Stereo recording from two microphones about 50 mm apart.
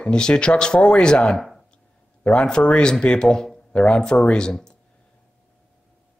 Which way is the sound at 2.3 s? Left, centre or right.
Centre.